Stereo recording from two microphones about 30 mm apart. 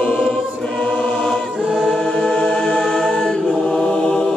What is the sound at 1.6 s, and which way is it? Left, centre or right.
Choir, centre.